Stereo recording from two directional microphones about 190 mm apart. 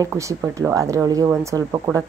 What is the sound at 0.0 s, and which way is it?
A woman's voice, 15° right (ahead or behind).